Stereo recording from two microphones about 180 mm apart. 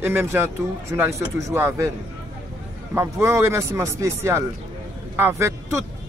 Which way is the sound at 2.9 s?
15° right (ahead or behind).